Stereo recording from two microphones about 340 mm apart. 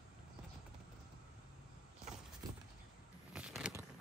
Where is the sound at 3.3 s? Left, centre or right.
Centre.